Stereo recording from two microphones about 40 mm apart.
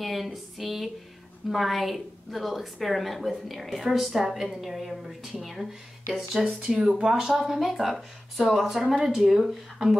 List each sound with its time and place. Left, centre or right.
0.0 s a sound: centre
1.5 s a woman's voice: centre
6.6 s speech: centre